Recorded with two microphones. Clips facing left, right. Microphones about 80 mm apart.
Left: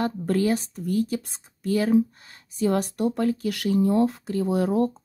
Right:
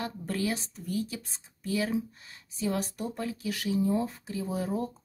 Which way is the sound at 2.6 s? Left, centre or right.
Left.